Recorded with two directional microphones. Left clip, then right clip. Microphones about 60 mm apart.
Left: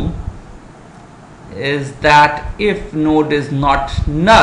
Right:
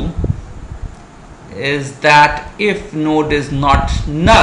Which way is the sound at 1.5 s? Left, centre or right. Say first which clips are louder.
Right 1 dB; centre.